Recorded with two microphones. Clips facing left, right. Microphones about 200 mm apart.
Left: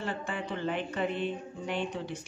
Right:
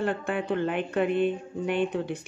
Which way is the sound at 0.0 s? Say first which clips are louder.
Right 7 dB; 55° right (ahead or behind).